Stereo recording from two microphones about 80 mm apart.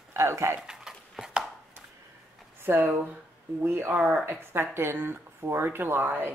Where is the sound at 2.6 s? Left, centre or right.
Right.